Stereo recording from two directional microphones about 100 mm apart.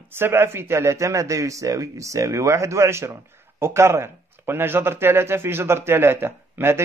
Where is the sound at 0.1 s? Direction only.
25° right (ahead or behind).